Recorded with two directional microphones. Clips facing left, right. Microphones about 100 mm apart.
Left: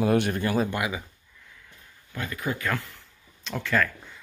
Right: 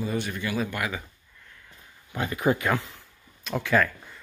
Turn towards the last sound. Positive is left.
turn(degrees=-10)  # may be behind; listen again after turning